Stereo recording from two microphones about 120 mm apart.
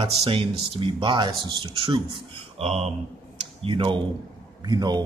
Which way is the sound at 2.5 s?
60° right (ahead or behind).